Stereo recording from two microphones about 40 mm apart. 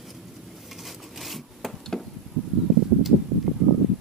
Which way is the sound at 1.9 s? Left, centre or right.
Centre.